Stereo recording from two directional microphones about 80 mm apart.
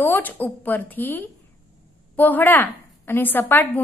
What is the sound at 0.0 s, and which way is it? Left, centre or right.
A woman's voice, left.